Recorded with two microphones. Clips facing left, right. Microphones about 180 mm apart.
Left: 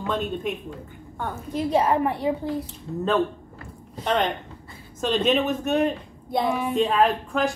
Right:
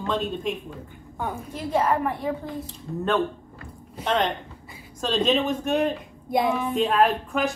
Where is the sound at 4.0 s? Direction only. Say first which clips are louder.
Even; 5° left (ahead or behind).